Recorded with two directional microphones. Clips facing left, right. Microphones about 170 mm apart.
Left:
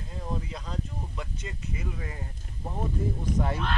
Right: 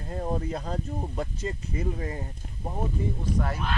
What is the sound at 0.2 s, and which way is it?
Speech, 45° right (ahead or behind).